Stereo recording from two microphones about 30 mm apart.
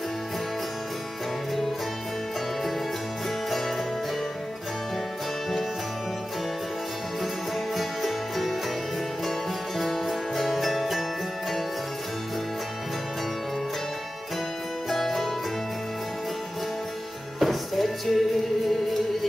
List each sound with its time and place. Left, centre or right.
3.4 s music: centre
7.7 s music: centre
9.8 s music: centre
14.9 s music: centre
17.4 s music: centre